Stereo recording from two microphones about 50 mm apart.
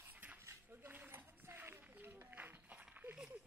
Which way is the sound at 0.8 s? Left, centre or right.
Right.